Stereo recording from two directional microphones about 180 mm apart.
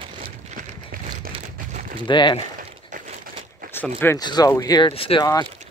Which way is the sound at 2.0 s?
25° left (ahead or behind).